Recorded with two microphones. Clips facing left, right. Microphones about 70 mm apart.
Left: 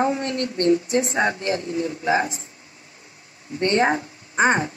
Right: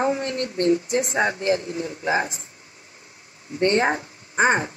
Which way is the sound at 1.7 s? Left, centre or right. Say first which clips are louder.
Left 2 dB; right.